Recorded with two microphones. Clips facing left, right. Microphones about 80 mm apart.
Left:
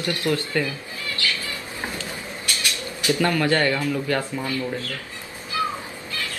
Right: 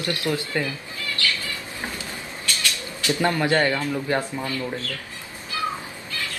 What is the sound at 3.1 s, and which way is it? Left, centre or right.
Speech, right.